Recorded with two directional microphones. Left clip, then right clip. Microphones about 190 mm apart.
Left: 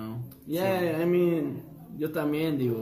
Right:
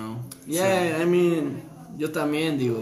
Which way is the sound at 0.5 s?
10° left (ahead or behind).